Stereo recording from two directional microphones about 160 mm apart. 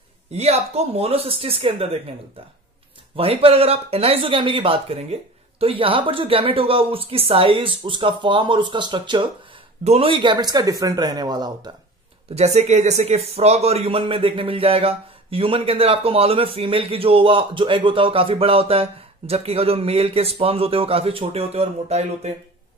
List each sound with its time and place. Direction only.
0.3 s speech: 40° right (ahead or behind)
3.2 s speech: 35° right (ahead or behind)
12.4 s speech: 45° right (ahead or behind)